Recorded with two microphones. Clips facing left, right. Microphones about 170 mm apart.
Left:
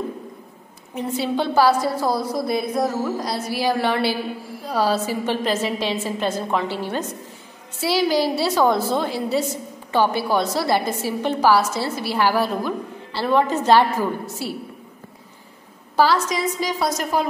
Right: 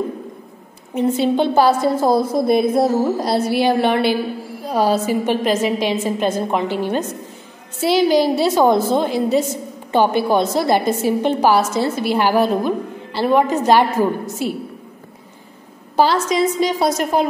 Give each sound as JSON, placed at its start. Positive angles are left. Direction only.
{"t": 0.9, "sound": "a woman's voice", "side_deg": -20}
{"t": 16.0, "sound": "a woman's voice", "side_deg": -25}